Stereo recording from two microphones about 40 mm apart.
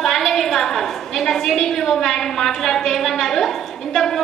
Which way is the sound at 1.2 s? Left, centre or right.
Centre.